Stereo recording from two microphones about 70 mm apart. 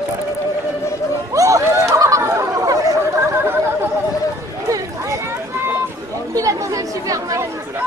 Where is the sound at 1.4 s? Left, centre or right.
Right.